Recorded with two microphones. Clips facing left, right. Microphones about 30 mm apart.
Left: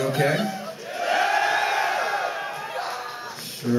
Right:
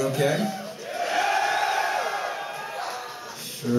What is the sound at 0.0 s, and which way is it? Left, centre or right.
Speech, left.